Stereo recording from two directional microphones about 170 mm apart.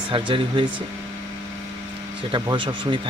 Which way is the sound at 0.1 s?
30° right (ahead or behind).